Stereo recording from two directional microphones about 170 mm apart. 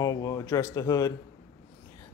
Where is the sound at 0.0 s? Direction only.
20° left (ahead or behind).